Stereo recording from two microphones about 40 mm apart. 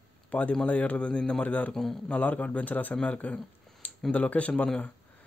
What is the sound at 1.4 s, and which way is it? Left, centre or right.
Speech, left.